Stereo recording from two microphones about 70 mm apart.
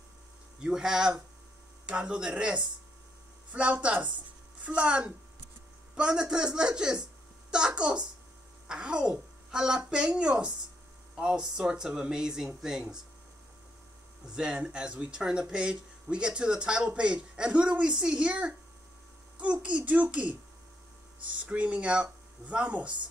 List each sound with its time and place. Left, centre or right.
0.6 s a woman's voice: centre
14.2 s speech: centre
21.5 s speech: centre